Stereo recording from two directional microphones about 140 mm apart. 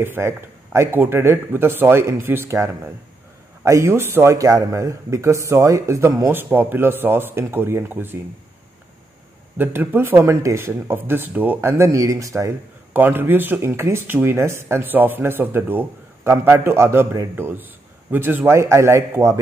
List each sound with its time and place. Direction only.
0.0 s speech: 15° right (ahead or behind)
9.6 s a man's voice: 15° right (ahead or behind)